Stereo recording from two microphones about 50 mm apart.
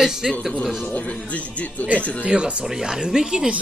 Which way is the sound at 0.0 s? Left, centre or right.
Centre.